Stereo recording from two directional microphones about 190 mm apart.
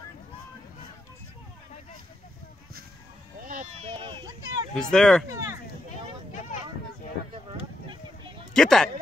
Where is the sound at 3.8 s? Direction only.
30° right (ahead or behind).